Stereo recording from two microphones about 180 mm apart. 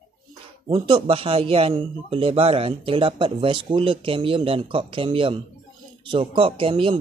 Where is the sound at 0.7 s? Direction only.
30° right (ahead or behind).